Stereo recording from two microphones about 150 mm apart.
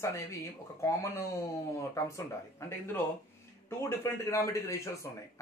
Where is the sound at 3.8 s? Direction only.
15° left (ahead or behind).